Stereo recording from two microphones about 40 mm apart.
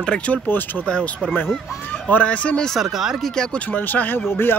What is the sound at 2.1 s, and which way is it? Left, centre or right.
Speech, left.